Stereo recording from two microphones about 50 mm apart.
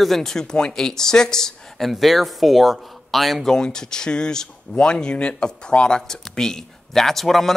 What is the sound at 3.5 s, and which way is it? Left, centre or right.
Speech, centre.